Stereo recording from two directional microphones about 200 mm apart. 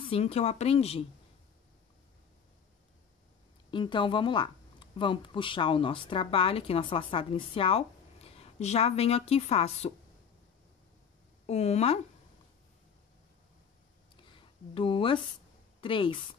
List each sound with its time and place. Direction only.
0.0 s speech: 30° left (ahead or behind)
3.7 s speech: 25° left (ahead or behind)
11.4 s speech: 35° left (ahead or behind)
14.7 s speech: 25° left (ahead or behind)